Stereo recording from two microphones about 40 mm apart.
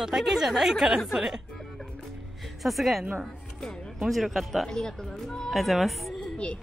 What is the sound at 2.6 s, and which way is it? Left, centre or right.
A woman's voice, centre.